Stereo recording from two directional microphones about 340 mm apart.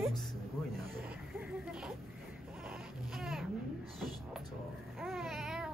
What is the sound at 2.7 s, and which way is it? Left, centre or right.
Baby cry, centre.